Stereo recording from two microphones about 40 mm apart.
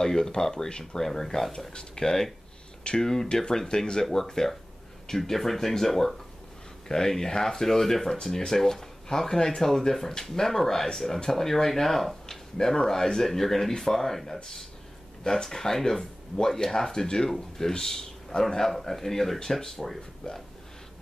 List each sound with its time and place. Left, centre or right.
0.0 s speech: centre